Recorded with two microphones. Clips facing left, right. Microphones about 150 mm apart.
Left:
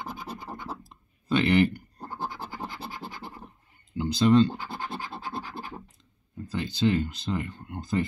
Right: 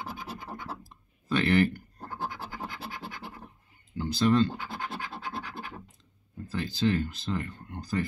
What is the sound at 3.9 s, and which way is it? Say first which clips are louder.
Speech: left 4 dB; 15° left (ahead or behind).